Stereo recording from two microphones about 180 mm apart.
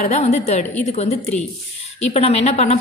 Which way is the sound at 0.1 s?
35° left (ahead or behind).